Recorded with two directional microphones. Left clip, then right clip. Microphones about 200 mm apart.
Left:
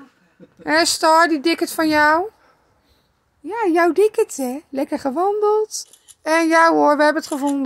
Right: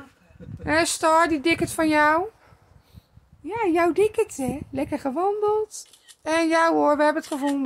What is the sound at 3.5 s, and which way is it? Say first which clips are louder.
A woman's voice: left 5 dB; 20° left (ahead or behind).